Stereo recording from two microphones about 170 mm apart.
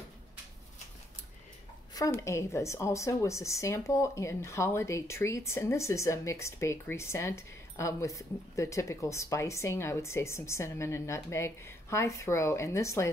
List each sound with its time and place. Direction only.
2.0 s speech: 15° left (ahead or behind)